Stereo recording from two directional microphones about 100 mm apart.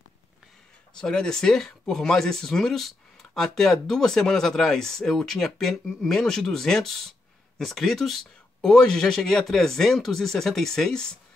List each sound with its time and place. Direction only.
0.9 s speech: 5° left (ahead or behind)